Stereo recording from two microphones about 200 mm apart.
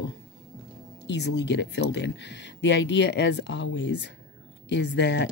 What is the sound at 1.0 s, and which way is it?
Speech, 60° left (ahead or behind).